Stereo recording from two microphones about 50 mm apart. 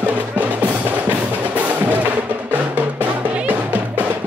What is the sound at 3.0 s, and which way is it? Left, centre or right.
Music, right.